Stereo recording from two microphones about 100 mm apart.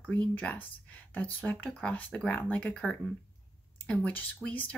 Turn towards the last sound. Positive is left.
turn(degrees=15)  # may be behind; listen again after turning